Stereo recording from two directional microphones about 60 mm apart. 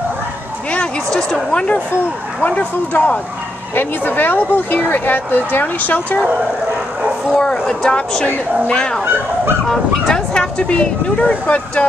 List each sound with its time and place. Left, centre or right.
0.7 s a woman's voice: centre
2.4 s speech: left
7.3 s speech: centre